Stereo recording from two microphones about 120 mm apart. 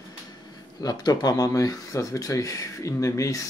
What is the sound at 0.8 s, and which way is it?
Speech, 35° left (ahead or behind).